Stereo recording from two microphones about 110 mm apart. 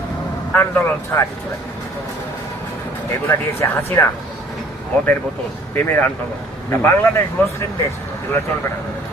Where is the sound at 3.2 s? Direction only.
20° left (ahead or behind).